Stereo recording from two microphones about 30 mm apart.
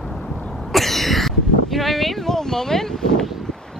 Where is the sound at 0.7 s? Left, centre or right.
Centre.